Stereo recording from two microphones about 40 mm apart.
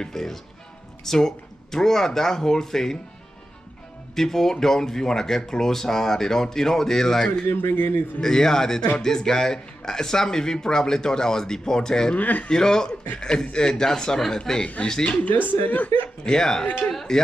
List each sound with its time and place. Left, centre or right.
0.0 s speech: centre
4.1 s speech: centre
7.4 s a man's voice: left
8.2 s speech: centre
12.2 s speech: left
12.4 s speech: centre
14.8 s speech: left
15.4 s speech: left
16.3 s speech: centre